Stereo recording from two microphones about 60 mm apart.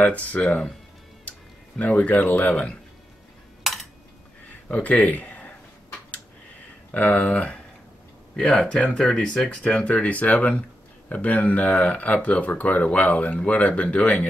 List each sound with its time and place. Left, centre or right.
0.0 s speech: left
1.8 s speech: left
4.6 s speech: left
6.9 s speech: left